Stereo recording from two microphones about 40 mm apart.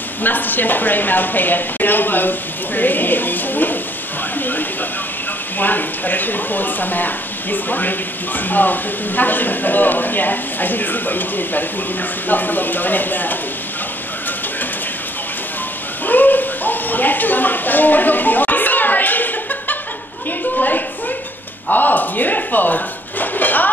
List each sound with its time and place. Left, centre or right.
0.2 s speech: left
16.1 s a sound: left
20.5 s a woman's voice: left